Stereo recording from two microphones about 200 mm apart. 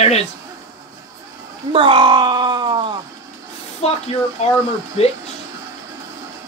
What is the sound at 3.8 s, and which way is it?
Speech, 30° left (ahead or behind).